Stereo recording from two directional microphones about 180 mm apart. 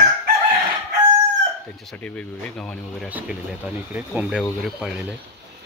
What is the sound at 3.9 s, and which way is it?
Speech, 10° right (ahead or behind).